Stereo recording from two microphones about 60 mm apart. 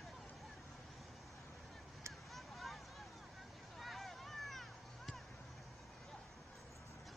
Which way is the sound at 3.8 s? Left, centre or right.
Centre.